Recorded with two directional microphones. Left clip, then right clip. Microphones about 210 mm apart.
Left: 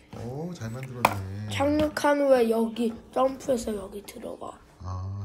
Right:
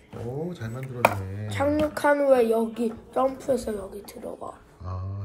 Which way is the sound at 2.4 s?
25° left (ahead or behind).